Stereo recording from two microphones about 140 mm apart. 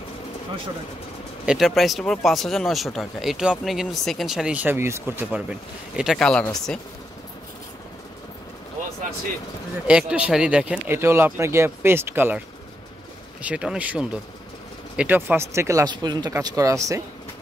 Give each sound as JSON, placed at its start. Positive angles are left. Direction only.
{"t": 1.4, "sound": "speech", "side_deg": -5}
{"t": 6.1, "sound": "speech", "side_deg": 5}
{"t": 9.8, "sound": "speech", "side_deg": -5}
{"t": 13.4, "sound": "speech", "side_deg": -10}